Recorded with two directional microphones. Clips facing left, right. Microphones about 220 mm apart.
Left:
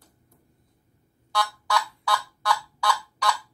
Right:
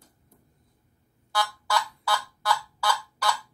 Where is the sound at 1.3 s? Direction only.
5° right (ahead or behind).